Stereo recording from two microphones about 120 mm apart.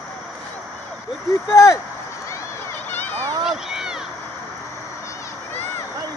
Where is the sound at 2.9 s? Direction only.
15° left (ahead or behind).